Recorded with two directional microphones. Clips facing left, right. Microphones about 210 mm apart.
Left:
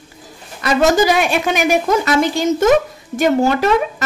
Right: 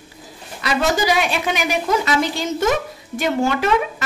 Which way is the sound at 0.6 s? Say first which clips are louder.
Left 6 dB; 50° left (ahead or behind).